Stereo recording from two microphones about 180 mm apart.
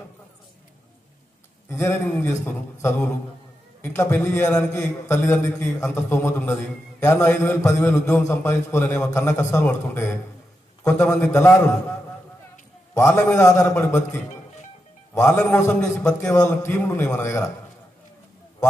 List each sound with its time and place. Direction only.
1.7 s a man's voice: 15° left (ahead or behind)
12.9 s a man's voice: 15° left (ahead or behind)
15.2 s a man's voice: 10° left (ahead or behind)